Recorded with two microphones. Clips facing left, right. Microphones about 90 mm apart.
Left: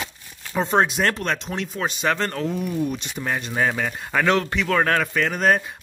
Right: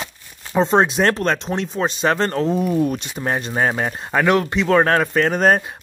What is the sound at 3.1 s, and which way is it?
Speech, 35° right (ahead or behind).